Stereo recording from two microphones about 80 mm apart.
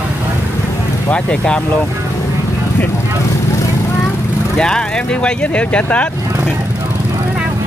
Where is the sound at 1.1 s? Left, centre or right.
Centre.